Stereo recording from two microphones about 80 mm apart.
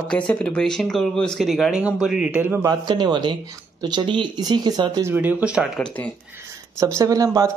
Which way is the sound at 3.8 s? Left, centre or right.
Right.